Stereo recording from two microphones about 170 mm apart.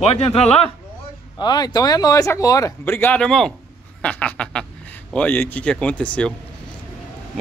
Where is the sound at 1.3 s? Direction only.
25° left (ahead or behind); by 6.3 s 5° left (ahead or behind).